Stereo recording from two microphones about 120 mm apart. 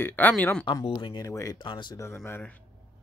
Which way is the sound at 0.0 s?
15° left (ahead or behind).